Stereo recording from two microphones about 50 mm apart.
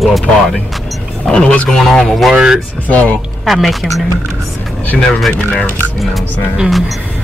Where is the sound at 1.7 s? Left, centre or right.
Centre.